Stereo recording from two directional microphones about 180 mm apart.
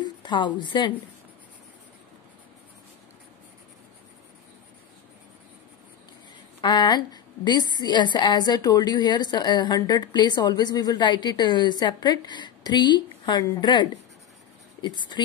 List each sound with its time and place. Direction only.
0.0 s speech: 25° left (ahead or behind)
6.6 s a woman's voice: 25° left (ahead or behind)
15.1 s a woman's voice: 25° left (ahead or behind)